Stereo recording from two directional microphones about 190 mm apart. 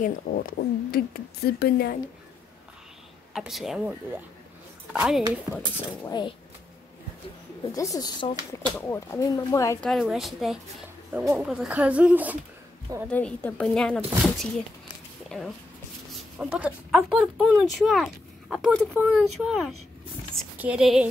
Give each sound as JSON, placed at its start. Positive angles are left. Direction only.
{"t": 0.0, "sound": "speech", "side_deg": 50}
{"t": 3.3, "sound": "speech", "side_deg": 0}
{"t": 4.9, "sound": "speech", "side_deg": 0}
{"t": 6.0, "sound": "speech", "side_deg": 20}
{"t": 7.7, "sound": "speech", "side_deg": 20}
{"t": 9.8, "sound": "speech", "side_deg": 0}
{"t": 13.1, "sound": "speech", "side_deg": 10}